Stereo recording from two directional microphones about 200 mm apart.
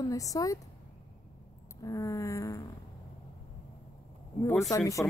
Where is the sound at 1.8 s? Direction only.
15° left (ahead or behind).